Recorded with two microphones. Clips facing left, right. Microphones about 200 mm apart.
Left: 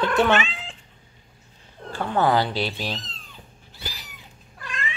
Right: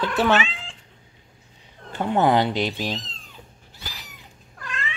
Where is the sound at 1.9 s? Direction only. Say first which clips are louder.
Right 2 dB; 20° right (ahead or behind).